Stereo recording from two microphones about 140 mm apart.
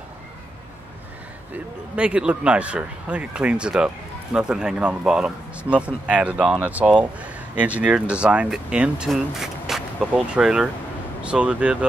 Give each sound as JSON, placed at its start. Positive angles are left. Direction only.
{"t": 1.5, "sound": "speech", "side_deg": -10}